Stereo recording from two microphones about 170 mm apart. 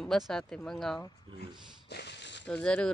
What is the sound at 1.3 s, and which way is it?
Speech, 30° right (ahead or behind).